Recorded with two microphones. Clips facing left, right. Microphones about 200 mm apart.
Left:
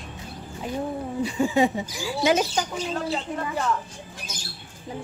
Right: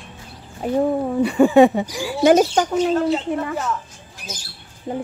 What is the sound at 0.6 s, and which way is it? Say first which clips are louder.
Speech: right 9 dB; 45° right (ahead or behind).